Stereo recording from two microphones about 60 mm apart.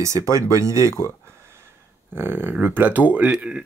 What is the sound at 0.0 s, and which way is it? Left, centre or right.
Speech, right.